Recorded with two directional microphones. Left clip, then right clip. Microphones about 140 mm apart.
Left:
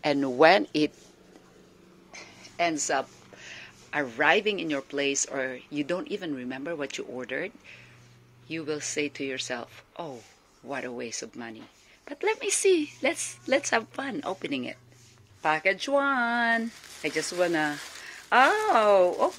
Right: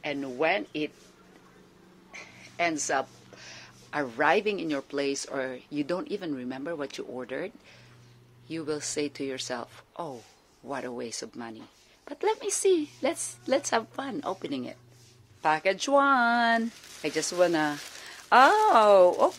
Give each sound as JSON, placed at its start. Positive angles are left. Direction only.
{"t": 0.0, "sound": "speech", "side_deg": 45}
{"t": 2.1, "sound": "speech", "side_deg": 15}
{"t": 15.7, "sound": "speech", "side_deg": -20}